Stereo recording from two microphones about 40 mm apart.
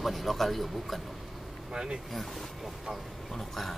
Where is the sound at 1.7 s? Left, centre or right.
Centre.